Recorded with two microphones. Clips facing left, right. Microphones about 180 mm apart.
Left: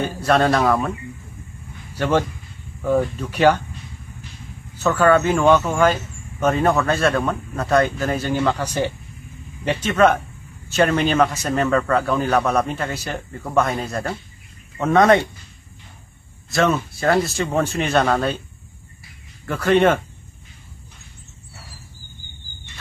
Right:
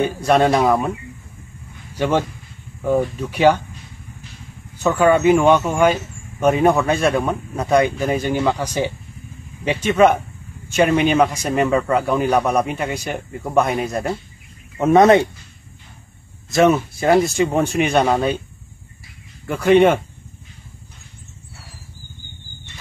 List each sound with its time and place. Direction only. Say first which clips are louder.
0.0 s a man's voice: right 2 dB; 10° right (ahead or behind)
2.0 s a man's voice: right 1 dB; 10° right (ahead or behind)
4.8 s a man's voice: right 2 dB; 15° right (ahead or behind)
9.7 s a man's voice: right 2 dB; 10° right (ahead or behind)
16.5 s a man's voice: right 5 dB; 20° right (ahead or behind)
19.4 s a man's voice: right 3 dB; 10° right (ahead or behind)